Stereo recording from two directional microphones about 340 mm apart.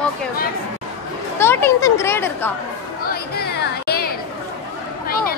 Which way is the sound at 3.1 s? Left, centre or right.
Left.